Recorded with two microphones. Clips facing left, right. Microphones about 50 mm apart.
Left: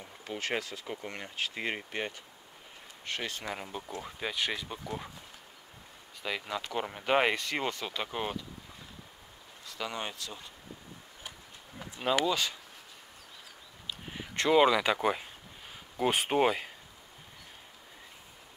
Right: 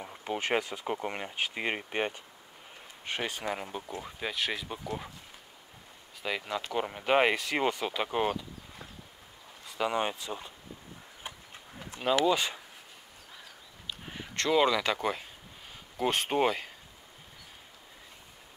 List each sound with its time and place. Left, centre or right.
0.0 s speech: right; by 5.1 s centre
6.2 s speech: centre
9.7 s speech: centre
11.3 s a sound: right
11.8 s a sound: centre
12.3 s speech: centre
14.3 s speech: centre